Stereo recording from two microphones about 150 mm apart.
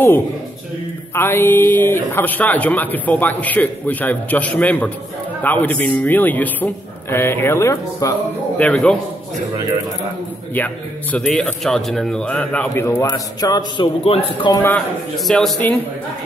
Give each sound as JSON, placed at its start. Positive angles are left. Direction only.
{"t": 1.1, "sound": "speech", "side_deg": 15}
{"t": 8.5, "sound": "speech", "side_deg": 10}
{"t": 10.5, "sound": "speech", "side_deg": 10}
{"t": 13.1, "sound": "a man's voice", "side_deg": 25}
{"t": 15.1, "sound": "a man's voice", "side_deg": 0}